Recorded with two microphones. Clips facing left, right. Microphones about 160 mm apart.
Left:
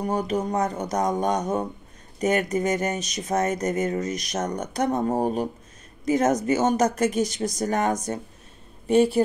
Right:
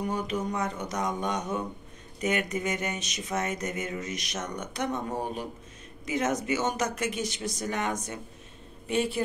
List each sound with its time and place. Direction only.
0.0 s a woman's voice: 40° left (ahead or behind)